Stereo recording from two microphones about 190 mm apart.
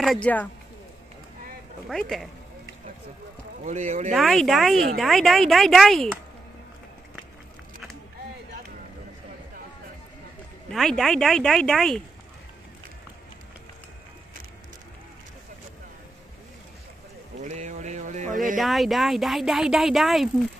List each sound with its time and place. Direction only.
0.0 s speech: 5° left (ahead or behind)
1.9 s speech: centre (ahead or behind)
3.6 s speech: 35° right (ahead or behind)
4.1 s speech: centre (ahead or behind)
10.7 s speech: centre (ahead or behind)
17.4 s a sound: 40° right (ahead or behind)
18.6 s speech: centre (ahead or behind)